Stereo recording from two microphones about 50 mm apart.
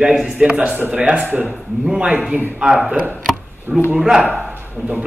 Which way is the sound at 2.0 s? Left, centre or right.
Centre.